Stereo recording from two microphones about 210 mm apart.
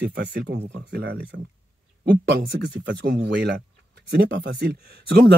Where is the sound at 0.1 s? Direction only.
55° right (ahead or behind).